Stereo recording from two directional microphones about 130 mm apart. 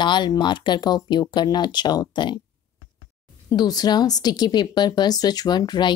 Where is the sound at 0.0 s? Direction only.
35° left (ahead or behind).